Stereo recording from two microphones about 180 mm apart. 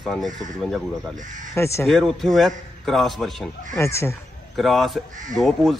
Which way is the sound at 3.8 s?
15° left (ahead or behind).